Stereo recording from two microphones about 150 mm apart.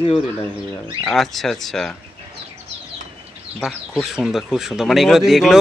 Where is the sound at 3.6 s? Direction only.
Centre (ahead or behind).